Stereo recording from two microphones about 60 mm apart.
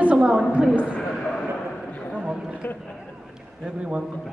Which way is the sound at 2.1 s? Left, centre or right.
Centre.